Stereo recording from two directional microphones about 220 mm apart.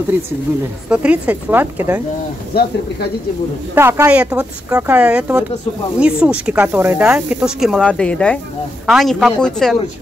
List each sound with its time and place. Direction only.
0.8 s speech: 5° right (ahead or behind)
2.5 s speech: 45° left (ahead or behind)
3.7 s speech: 10° right (ahead or behind)